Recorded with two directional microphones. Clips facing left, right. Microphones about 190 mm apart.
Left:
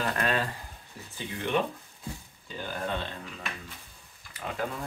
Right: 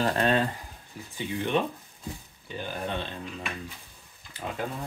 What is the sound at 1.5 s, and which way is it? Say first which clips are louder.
Speech: right 1 dB; 25° right (ahead or behind).